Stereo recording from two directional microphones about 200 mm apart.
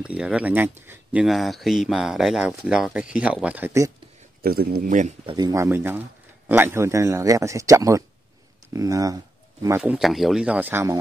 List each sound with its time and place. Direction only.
0.0 s speech: 5° right (ahead or behind)
4.4 s speech: 50° right (ahead or behind)
5.2 s speech: 20° right (ahead or behind)